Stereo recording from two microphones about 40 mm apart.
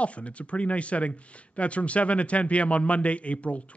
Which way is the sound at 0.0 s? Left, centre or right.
Left.